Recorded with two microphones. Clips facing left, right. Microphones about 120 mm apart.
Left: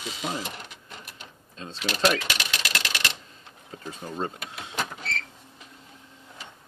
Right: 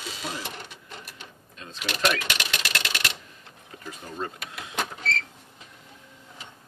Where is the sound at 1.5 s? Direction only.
30° left (ahead or behind).